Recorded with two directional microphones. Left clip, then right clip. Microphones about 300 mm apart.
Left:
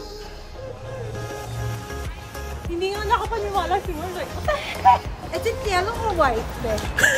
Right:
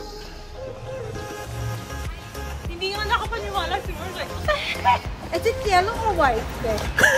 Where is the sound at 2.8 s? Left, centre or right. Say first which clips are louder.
Left 1 dB; left.